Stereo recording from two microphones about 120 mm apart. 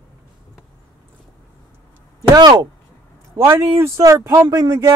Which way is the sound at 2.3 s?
35° right (ahead or behind).